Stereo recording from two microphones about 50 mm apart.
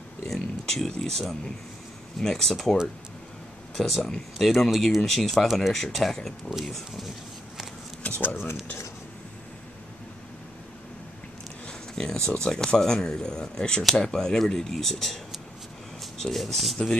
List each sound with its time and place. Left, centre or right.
0.3 s speech: centre
8.0 s speech: left
11.9 s speech: centre